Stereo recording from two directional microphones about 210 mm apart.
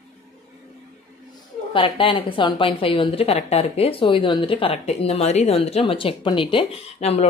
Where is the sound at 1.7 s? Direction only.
25° left (ahead or behind).